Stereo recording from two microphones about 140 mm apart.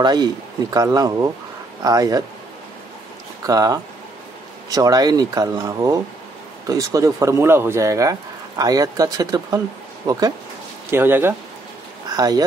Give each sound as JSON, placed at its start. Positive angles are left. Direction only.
{"t": 0.0, "sound": "speech", "side_deg": -30}
{"t": 3.4, "sound": "speech", "side_deg": -25}
{"t": 10.9, "sound": "speech", "side_deg": -15}
{"t": 12.1, "sound": "speech", "side_deg": -25}